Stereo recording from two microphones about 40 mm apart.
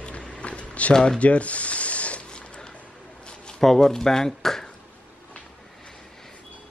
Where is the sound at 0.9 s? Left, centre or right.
Centre.